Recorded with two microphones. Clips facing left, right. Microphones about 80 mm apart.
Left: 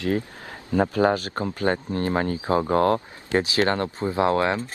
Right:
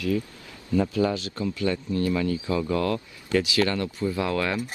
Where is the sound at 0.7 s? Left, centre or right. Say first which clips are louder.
Left 3 dB; left.